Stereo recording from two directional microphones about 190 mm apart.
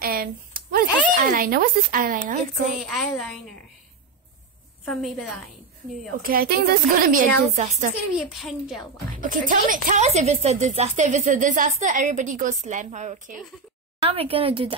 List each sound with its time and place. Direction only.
0.0 s speech: 50° right (ahead or behind)
2.8 s a woman's voice: centre (ahead or behind)
4.8 s a woman's voice: centre (ahead or behind)
6.2 s a woman's voice: 50° right (ahead or behind)
8.4 s a woman's voice: centre (ahead or behind)
9.2 s a woman's voice: 45° right (ahead or behind); by 14.8 s 30° right (ahead or behind)